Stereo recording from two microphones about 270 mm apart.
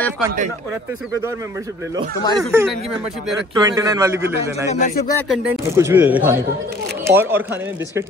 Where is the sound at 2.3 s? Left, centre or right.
Centre.